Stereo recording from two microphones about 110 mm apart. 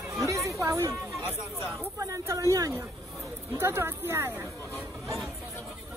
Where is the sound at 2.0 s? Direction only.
30° right (ahead or behind).